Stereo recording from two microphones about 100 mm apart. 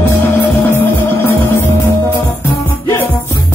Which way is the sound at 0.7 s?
25° left (ahead or behind).